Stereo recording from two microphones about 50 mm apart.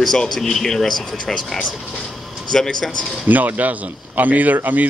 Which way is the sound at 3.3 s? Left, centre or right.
Right.